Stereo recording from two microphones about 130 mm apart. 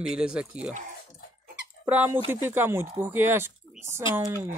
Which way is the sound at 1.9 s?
10° right (ahead or behind).